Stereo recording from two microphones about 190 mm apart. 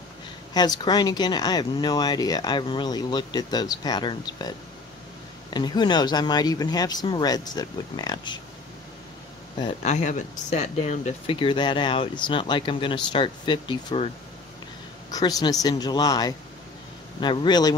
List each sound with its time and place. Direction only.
0.6 s speech: 20° left (ahead or behind)
9.8 s speech: 40° left (ahead or behind)
15.0 s speech: 20° left (ahead or behind)